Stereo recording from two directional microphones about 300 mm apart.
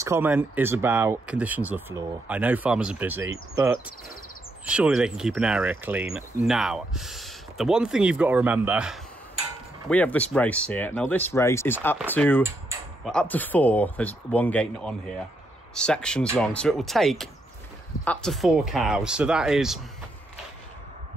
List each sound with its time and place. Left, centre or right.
0.0 s speech: centre